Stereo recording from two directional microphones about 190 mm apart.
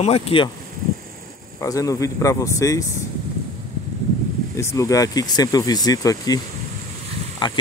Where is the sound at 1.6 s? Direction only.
15° left (ahead or behind).